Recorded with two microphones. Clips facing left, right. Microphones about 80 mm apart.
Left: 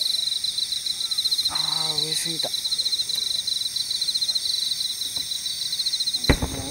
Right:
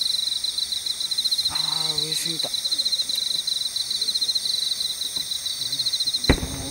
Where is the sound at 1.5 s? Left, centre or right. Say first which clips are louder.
Left 2 dB; centre.